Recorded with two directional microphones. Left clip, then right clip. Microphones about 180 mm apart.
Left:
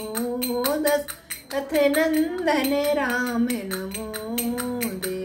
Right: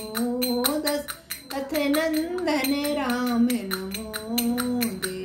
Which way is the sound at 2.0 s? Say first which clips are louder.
Left 3 dB; 20° left (ahead or behind).